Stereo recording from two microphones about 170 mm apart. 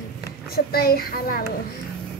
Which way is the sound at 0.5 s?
65° left (ahead or behind).